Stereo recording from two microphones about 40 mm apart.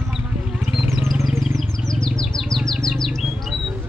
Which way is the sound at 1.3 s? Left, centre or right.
Centre.